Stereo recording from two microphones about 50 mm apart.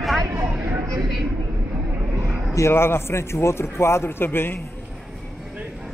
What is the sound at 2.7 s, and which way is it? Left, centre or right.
A man's voice, left.